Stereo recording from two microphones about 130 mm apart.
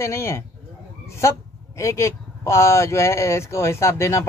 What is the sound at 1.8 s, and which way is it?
Speech, 20° left (ahead or behind).